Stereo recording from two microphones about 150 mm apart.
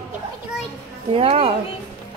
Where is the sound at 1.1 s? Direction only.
40° right (ahead or behind).